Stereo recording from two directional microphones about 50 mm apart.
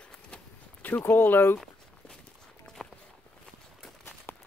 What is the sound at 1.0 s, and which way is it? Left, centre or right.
Speech, left.